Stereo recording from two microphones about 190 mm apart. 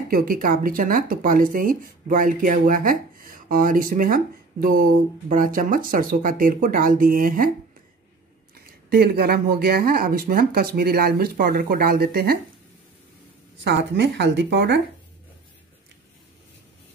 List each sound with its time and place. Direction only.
0.1 s speech: 50° right (ahead or behind)
8.5 s speech: 55° right (ahead or behind)
13.7 s a woman's voice: 65° right (ahead or behind)